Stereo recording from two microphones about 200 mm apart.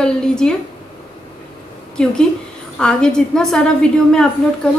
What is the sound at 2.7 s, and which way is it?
A woman's voice, 5° left (ahead or behind).